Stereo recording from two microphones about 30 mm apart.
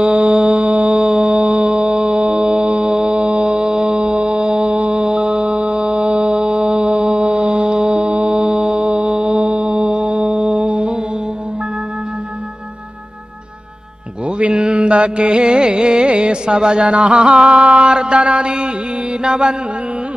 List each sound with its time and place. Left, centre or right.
0.0 s music: right
0.3 s music: right
0.9 s music: right
4.0 s music: right
7.9 s music: right
8.4 s music: right
14.5 s music: right
17.9 s music: right
19.2 s mantra: right